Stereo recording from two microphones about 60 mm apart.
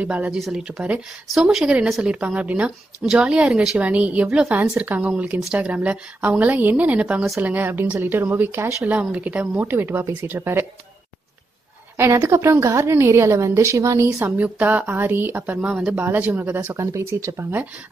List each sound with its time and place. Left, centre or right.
0.0 s a woman's voice: right
1.3 s a woman's voice: centre
2.0 s a woman's voice: centre
7.4 s a woman's voice: right
8.8 s a woman's voice: right
9.7 s a woman's voice: right
12.0 s a woman's voice: right
14.1 s a woman's voice: right
15.7 s speech: centre
16.0 s a woman's voice: right
16.6 s a woman's voice: right
17.4 s a woman's voice: right